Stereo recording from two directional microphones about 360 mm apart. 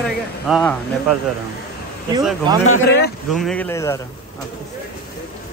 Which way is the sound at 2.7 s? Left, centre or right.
Left.